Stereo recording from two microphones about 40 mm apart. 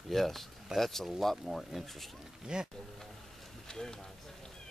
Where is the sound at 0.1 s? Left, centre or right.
Centre.